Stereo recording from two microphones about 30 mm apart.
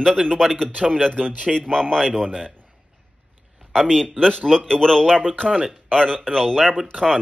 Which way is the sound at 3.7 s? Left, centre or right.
Centre.